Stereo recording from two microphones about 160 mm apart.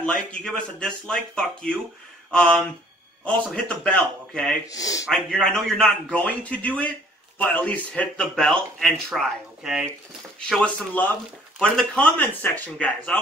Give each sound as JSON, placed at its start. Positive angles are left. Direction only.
{"t": 0.0, "sound": "speech", "side_deg": 5}
{"t": 4.6, "sound": "speech", "side_deg": 20}
{"t": 5.0, "sound": "a man's voice", "side_deg": 5}